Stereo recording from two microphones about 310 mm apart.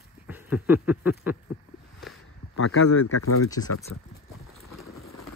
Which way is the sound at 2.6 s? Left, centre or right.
Left.